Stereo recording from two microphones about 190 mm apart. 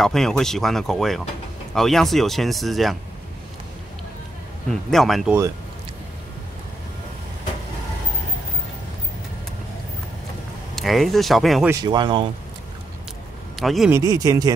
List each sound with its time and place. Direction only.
0.0 s speech: centre (ahead or behind)
4.6 s speech: centre (ahead or behind)
10.8 s speech: centre (ahead or behind)
11.7 s speech: 20° right (ahead or behind)
13.6 s speech: centre (ahead or behind)
13.9 s speech: 20° right (ahead or behind)